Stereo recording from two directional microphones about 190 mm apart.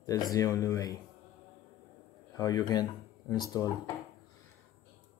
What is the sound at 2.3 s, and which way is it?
Speech, 20° left (ahead or behind).